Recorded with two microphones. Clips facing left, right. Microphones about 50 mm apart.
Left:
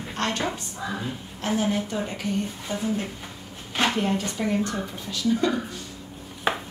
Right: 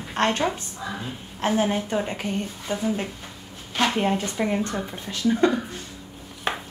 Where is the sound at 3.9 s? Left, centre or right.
Right.